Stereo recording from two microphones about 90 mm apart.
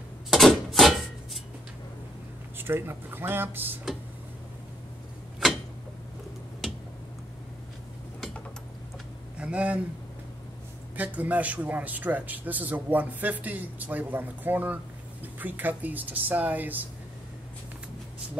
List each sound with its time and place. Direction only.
0.3 s a sound: centre (ahead or behind)
2.5 s speech: 25° right (ahead or behind)
9.4 s speech: 15° right (ahead or behind)
11.0 s a man's voice: 15° right (ahead or behind)